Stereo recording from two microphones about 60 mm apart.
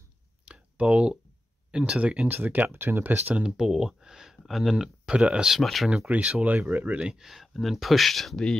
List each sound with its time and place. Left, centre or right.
0.5 s a sound: right
1.7 s speech: centre
2.2 s speech: right
3.3 s speech: centre
6.0 s speech: right; by 8.4 s centre